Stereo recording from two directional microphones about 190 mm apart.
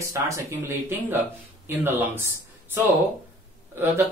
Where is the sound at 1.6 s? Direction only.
10° right (ahead or behind).